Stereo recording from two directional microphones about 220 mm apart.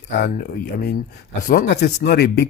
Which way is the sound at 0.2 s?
45° left (ahead or behind).